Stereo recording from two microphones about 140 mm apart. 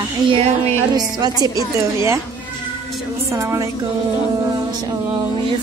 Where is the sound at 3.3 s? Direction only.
20° right (ahead or behind).